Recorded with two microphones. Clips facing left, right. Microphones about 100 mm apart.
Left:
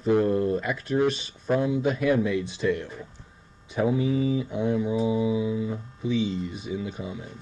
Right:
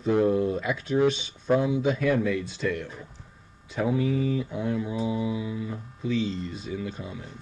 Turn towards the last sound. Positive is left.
turn(degrees=15)  # may be behind; listen again after turning